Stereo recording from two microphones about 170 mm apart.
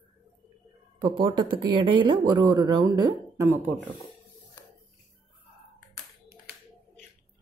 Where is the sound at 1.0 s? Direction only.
25° right (ahead or behind).